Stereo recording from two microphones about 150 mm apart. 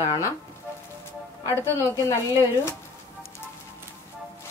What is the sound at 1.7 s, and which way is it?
Speech, 20° left (ahead or behind).